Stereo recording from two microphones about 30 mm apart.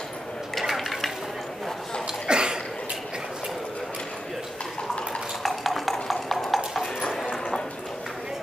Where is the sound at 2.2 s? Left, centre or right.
Right.